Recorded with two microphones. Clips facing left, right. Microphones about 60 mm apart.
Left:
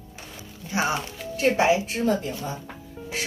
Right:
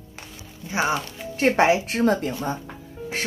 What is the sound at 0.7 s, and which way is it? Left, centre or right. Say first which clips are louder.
Speech: right 2 dB; right.